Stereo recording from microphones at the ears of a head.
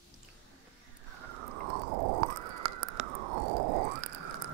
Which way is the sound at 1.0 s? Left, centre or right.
Right.